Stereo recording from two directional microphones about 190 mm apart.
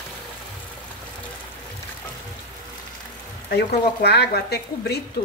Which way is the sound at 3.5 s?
55° left (ahead or behind).